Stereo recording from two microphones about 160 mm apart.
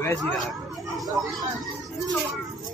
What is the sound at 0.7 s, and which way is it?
Speech, centre (ahead or behind).